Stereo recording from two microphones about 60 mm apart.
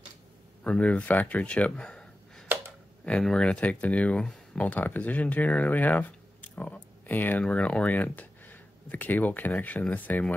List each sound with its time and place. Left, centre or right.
0.7 s speech: left
2.4 s a sound: right
3.1 s speech: centre